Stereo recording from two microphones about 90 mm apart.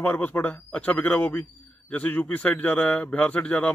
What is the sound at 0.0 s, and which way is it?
A man's voice, 20° left (ahead or behind).